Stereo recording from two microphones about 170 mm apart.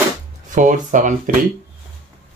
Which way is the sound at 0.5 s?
50° right (ahead or behind).